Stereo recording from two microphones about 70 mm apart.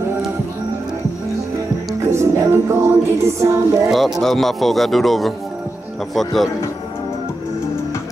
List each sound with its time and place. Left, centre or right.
2.0 s music: right
3.9 s speech: centre